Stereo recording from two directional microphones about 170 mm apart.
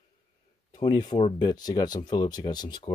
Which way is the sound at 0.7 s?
25° left (ahead or behind).